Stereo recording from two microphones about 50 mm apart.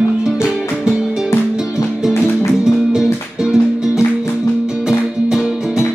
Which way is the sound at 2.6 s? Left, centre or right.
Centre.